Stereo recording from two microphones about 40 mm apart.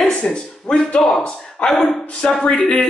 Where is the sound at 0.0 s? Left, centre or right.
Left.